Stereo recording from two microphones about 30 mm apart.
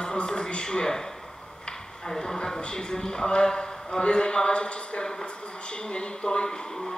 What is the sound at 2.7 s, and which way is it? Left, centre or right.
A woman's voice, left.